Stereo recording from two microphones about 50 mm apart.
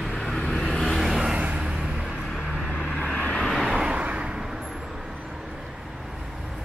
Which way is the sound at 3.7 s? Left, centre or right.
Centre.